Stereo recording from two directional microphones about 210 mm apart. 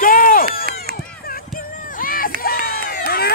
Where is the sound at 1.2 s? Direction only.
45° left (ahead or behind).